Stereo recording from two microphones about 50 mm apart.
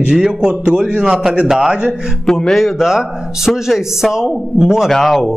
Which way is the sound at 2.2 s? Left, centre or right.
Centre.